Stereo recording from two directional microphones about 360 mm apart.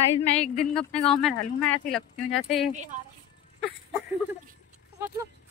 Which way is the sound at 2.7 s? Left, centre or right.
Centre.